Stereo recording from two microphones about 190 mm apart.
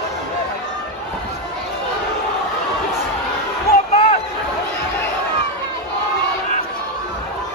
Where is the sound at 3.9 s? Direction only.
35° left (ahead or behind).